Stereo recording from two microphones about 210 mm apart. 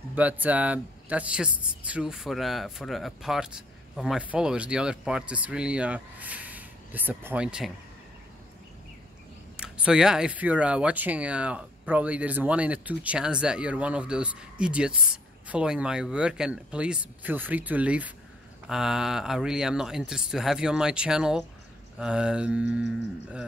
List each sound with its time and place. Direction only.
0.1 s speech: 5° right (ahead or behind)
9.6 s speech: 5° right (ahead or behind)